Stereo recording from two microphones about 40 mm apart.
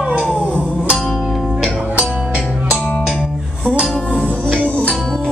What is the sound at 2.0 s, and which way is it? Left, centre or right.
Music, centre.